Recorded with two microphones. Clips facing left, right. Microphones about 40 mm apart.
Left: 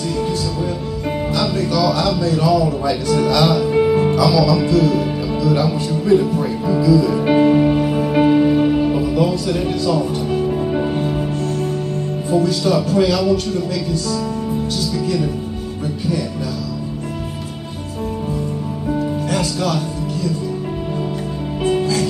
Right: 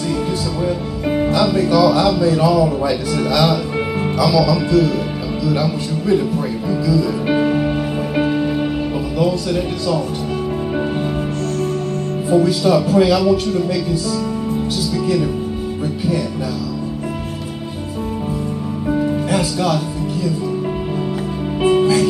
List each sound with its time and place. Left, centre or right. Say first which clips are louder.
1.1 s speech: right 5 dB; centre
12.3 s speech: right 3 dB; centre
18.9 s music: right 3 dB; centre
19.3 s speech: right 1 dB; centre
21.6 s music: right 4 dB; centre